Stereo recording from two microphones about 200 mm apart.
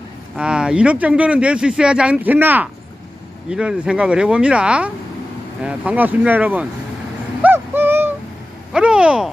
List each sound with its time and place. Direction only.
0.4 s speech: 5° right (ahead or behind)
7.4 s a sound: 10° right (ahead or behind)
8.7 s speech: 5° right (ahead or behind)